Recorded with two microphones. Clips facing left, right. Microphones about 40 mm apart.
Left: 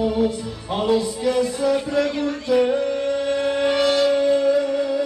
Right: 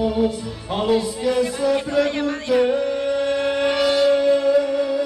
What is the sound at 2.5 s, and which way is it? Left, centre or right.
Shofar, centre.